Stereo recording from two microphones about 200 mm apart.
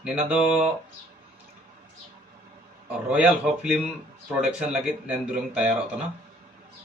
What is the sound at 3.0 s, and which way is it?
A man's voice, 5° right (ahead or behind).